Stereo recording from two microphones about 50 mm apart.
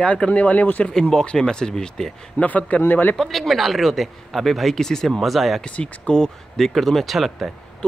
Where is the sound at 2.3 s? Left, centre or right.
Left.